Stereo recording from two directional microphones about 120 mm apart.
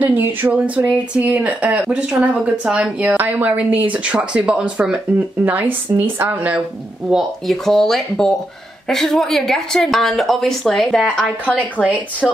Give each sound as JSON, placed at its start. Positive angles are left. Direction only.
{"t": 0.0, "sound": "speech", "side_deg": -15}
{"t": 7.1, "sound": "a woman's voice", "side_deg": 0}